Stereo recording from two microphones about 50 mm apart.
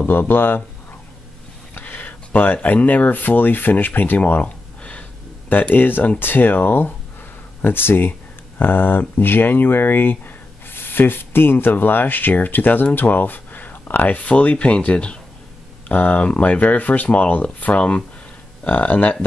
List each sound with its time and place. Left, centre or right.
0.0 s speech: left
1.7 s speech: left